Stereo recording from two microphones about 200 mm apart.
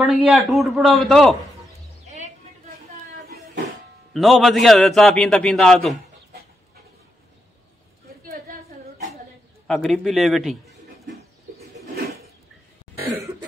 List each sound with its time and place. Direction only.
0.0 s a man's voice: centre (ahead or behind)
4.1 s a man's voice: centre (ahead or behind)
8.3 s a sound: 45° right (ahead or behind)
9.7 s a man's voice: centre (ahead or behind)